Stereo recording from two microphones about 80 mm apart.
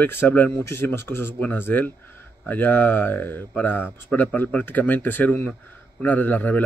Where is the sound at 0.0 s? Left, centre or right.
Left.